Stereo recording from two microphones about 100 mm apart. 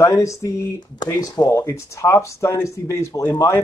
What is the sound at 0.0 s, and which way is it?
Speech, 30° left (ahead or behind).